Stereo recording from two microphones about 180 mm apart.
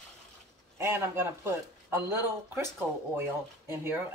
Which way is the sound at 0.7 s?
15° right (ahead or behind).